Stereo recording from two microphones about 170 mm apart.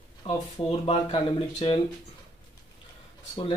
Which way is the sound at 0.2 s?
30° left (ahead or behind).